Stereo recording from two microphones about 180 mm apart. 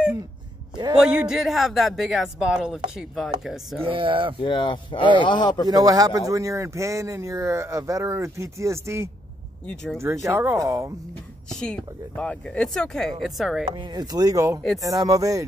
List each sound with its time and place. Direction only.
0.9 s speech: 5° right (ahead or behind)
3.8 s speech: 30° right (ahead or behind)
4.4 s speech: 25° left (ahead or behind)
5.7 s a man's voice: 20° right (ahead or behind)
11.5 s speech: 5° left (ahead or behind)
13.7 s speech: 25° right (ahead or behind)